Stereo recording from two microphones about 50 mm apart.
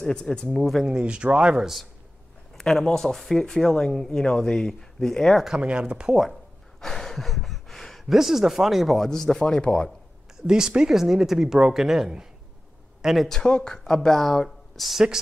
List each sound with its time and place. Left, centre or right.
0.0 s speech: centre
0.8 s speech: right
1.6 s speech: centre
2.5 s speech: centre
5.6 s speech: right
6.8 s gasp: centre
8.1 s speech: centre
10.4 s speech: centre
13.3 s speech: centre
14.9 s speech: centre